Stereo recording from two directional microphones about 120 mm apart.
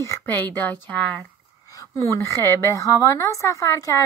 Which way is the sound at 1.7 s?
30° left (ahead or behind).